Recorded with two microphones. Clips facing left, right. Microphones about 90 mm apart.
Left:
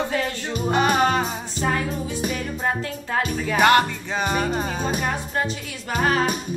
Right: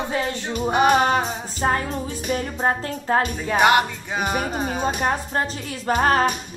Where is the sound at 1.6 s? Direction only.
40° right (ahead or behind).